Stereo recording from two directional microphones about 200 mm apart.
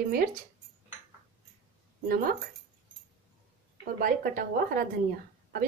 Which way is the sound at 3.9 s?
45° right (ahead or behind).